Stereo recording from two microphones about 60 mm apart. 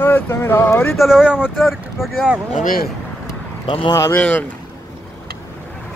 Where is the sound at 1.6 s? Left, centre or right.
Centre.